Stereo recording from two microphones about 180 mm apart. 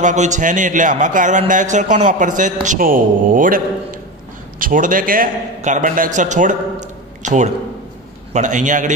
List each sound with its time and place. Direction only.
0.0 s a man's voice: 40° right (ahead or behind)